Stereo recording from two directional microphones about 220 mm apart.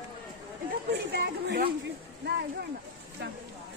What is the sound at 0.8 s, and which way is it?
Speech, 50° right (ahead or behind).